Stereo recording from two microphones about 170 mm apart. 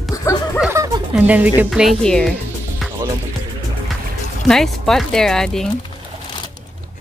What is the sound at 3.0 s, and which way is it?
Music, 25° right (ahead or behind).